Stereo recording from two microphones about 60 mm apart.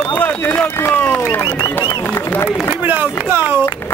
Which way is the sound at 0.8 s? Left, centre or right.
Left.